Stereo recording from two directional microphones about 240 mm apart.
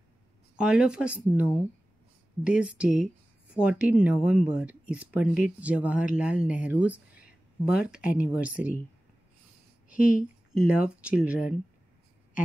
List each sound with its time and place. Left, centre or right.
0.6 s speech: centre
9.8 s a sound: left
10.6 s speech: centre